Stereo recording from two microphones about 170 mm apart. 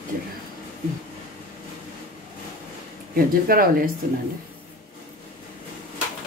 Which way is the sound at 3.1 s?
60° right (ahead or behind).